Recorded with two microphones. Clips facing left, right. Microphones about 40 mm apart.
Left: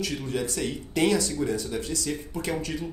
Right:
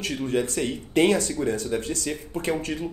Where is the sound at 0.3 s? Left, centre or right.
Right.